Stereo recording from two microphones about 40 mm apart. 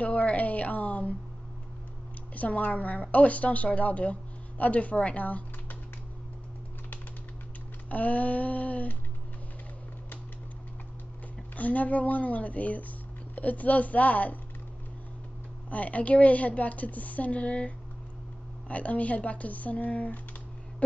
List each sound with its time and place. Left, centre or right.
0.0 s a woman's voice: left
2.3 s a woman's voice: left
7.9 s a woman's voice: left
11.5 s a woman's voice: left
15.7 s a woman's voice: left